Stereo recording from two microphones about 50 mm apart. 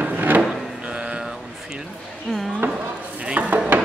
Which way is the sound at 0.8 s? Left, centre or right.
Right.